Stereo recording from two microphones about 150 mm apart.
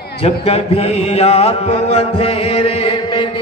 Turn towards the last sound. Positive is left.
turn(degrees=35)  # may be behind; listen again after turning